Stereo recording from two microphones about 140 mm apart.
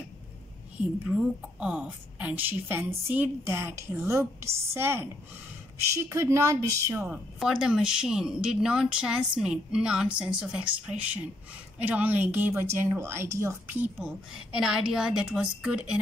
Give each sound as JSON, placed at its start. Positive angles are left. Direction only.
{"t": 1.0, "sound": "a woman's voice", "side_deg": -5}
{"t": 7.3, "sound": "a woman's voice", "side_deg": -5}